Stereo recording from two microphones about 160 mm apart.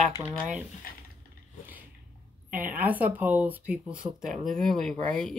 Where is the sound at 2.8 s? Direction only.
10° right (ahead or behind).